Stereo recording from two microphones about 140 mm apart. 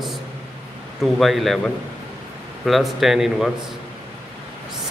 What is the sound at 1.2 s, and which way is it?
Speech, centre (ahead or behind).